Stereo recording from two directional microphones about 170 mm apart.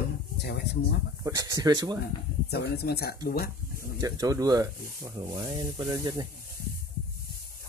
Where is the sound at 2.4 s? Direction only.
70° left (ahead or behind).